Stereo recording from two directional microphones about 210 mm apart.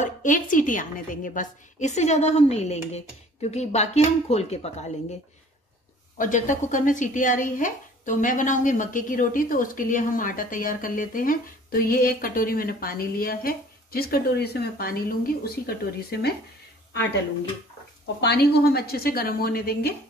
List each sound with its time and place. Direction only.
0.0 s speech: 40° left (ahead or behind)
6.1 s speech: 35° left (ahead or behind)
18.2 s a woman's voice: 50° left (ahead or behind)